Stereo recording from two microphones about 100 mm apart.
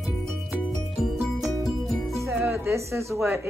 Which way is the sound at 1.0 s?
Centre (ahead or behind).